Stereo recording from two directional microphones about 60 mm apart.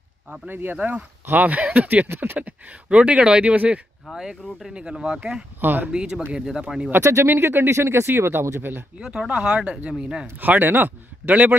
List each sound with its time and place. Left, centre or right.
0.5 s speech: right
0.7 s speech: right
4.1 s speech: centre
5.6 s speech: right
5.9 s speech: centre
7.0 s speech: right
9.0 s speech: centre
10.3 s speech: right